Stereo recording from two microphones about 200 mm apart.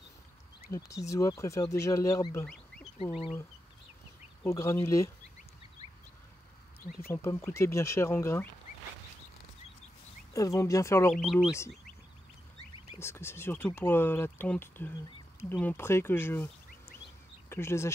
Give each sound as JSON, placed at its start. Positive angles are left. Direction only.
{"t": 0.7, "sound": "speech", "side_deg": 15}
{"t": 2.4, "sound": "fowl", "side_deg": 0}
{"t": 3.0, "sound": "speech", "side_deg": 30}
{"t": 4.4, "sound": "speech", "side_deg": 15}
{"t": 7.1, "sound": "speech", "side_deg": 10}
{"t": 10.3, "sound": "speech", "side_deg": 15}
{"t": 13.0, "sound": "speech", "side_deg": 10}
{"t": 17.5, "sound": "speech", "side_deg": 15}